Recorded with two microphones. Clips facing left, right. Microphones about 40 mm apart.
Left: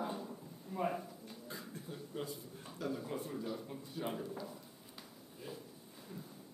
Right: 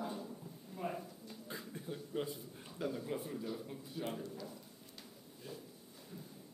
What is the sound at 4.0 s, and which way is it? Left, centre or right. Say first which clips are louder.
Speech: left 2 dB; centre.